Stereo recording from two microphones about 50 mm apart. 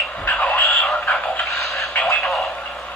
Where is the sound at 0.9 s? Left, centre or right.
Left.